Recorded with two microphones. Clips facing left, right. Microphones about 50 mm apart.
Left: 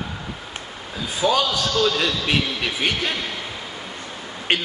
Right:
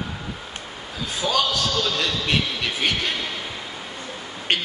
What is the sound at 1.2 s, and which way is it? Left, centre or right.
A man's voice, left.